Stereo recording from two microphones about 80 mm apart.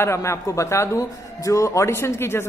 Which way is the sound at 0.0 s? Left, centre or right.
Left.